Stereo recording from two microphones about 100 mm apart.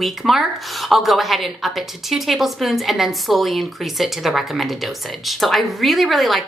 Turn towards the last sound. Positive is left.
turn(degrees=0)  # may be behind; listen again after turning